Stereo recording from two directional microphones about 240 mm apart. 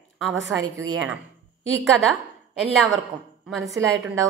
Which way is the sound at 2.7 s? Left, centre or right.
Centre.